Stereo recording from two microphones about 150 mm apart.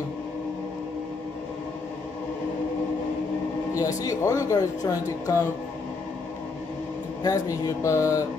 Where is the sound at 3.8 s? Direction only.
25° left (ahead or behind).